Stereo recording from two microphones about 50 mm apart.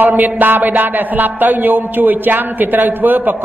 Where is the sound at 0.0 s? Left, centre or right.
Right.